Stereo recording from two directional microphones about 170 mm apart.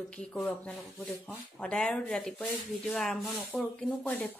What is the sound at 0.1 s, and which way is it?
Speech, 5° left (ahead or behind).